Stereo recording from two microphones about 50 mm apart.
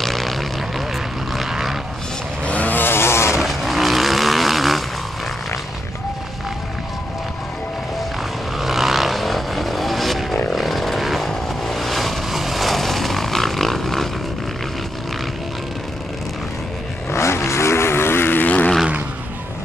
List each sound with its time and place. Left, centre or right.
0.0 s vehicle: centre
2.4 s vehicle: left
2.7 s chainsaw: left
3.3 s vehicle: centre
8.5 s vehicle: centre
17.1 s vehicle: left